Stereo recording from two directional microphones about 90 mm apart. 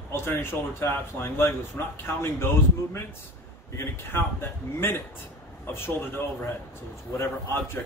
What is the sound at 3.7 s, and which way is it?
A man's voice, 25° left (ahead or behind).